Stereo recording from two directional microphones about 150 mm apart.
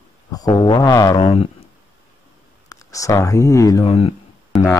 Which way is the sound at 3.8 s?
45° left (ahead or behind).